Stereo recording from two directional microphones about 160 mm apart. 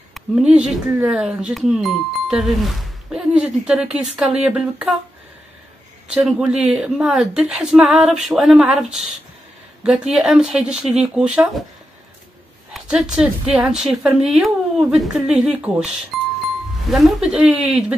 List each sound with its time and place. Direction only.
0.1 s speech: 5° right (ahead or behind)
6.0 s speech: 5° right (ahead or behind)
9.8 s speech: 5° right (ahead or behind)
12.7 s speech: 5° right (ahead or behind)
16.1 s music: centre (ahead or behind)
16.9 s speech: 5° right (ahead or behind)